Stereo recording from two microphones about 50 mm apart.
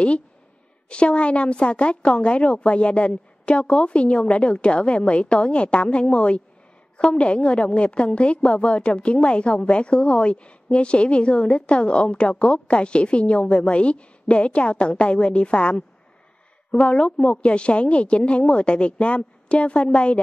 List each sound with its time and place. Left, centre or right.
0.8 s a woman's voice: left